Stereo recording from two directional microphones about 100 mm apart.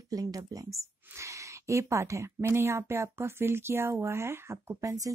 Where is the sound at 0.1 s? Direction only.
40° right (ahead or behind).